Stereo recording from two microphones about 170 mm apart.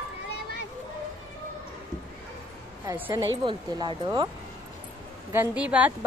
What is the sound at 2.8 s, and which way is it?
Speech, 10° right (ahead or behind).